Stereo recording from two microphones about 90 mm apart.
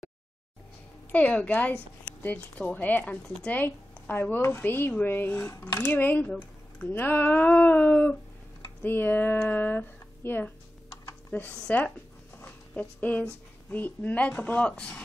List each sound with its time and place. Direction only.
1.1 s a woman's voice: 15° left (ahead or behind)
11.5 s a woman's voice: 15° left (ahead or behind)